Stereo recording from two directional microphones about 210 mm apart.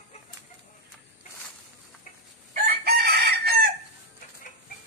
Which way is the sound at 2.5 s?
45° right (ahead or behind).